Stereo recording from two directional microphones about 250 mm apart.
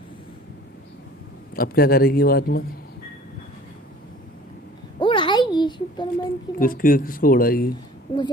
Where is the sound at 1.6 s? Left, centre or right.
Left.